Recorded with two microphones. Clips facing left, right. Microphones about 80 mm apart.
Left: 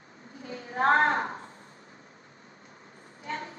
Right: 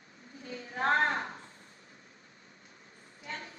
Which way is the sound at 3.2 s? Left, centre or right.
Left.